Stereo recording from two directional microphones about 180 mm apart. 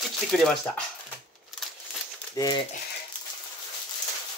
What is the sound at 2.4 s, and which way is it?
Speech, 25° left (ahead or behind).